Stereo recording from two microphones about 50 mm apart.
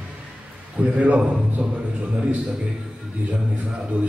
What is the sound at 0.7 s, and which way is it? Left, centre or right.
Speech, right.